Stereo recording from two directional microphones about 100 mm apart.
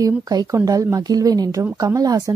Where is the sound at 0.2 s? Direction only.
35° right (ahead or behind).